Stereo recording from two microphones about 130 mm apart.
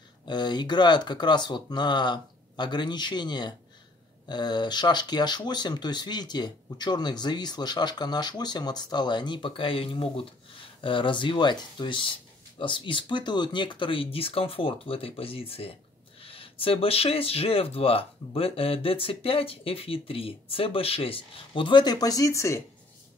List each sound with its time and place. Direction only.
0.2 s speech: 35° left (ahead or behind)